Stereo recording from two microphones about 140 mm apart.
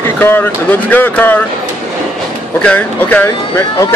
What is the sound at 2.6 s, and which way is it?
Speech, 10° left (ahead or behind).